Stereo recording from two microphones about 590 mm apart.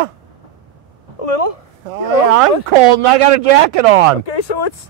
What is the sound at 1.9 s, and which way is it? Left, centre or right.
Speech, right.